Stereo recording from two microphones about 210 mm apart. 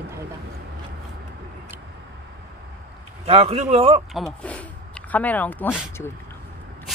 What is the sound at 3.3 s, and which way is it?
Speech, 30° right (ahead or behind).